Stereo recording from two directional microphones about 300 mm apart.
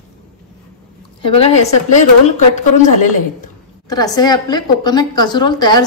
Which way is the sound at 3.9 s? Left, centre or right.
Centre.